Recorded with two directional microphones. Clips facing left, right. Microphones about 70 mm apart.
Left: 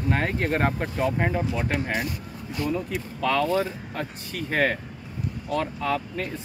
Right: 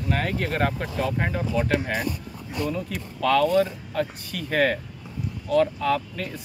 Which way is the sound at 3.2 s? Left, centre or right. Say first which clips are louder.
Right 4 dB; left.